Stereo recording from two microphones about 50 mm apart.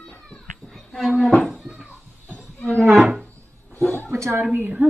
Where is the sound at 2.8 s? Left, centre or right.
Centre.